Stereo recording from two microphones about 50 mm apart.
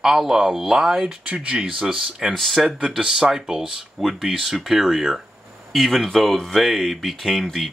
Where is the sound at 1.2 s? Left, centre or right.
Right; by 2.3 s centre.